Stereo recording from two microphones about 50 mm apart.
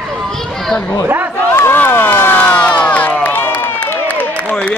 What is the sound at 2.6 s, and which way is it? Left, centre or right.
Crowd, left.